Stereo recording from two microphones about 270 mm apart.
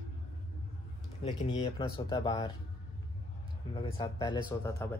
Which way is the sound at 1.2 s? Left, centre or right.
Left.